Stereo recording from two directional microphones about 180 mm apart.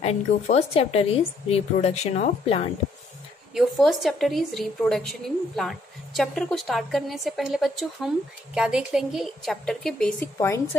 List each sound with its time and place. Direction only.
0.6 s a woman's voice: 35° left (ahead or behind)
3.5 s a woman's voice: centre (ahead or behind)
10.4 s speech: 15° left (ahead or behind)